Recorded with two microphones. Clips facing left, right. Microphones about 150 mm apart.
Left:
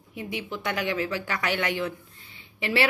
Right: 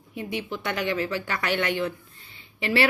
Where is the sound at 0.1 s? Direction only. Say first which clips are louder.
Right 2 dB; 15° left (ahead or behind).